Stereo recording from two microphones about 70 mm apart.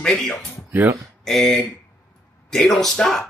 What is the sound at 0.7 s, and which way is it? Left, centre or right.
Speech, right.